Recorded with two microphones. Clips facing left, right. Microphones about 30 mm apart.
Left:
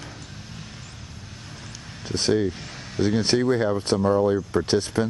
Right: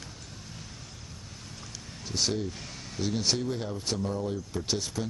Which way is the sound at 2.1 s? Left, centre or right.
Left.